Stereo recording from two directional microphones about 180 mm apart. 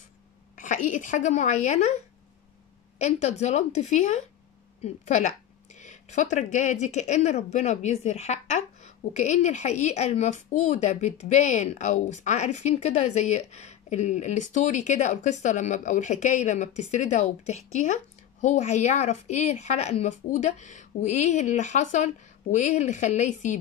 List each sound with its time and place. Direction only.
0.6 s a woman's voice: 45° left (ahead or behind)